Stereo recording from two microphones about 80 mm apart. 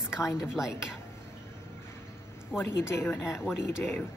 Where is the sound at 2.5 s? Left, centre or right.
Left.